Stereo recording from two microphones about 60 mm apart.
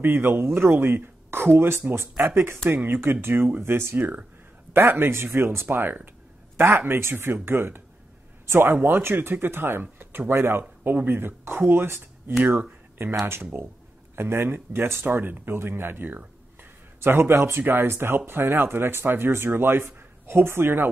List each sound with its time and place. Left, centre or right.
0.0 s speech: right